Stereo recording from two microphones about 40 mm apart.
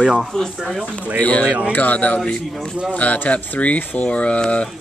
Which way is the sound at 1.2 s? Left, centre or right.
Left.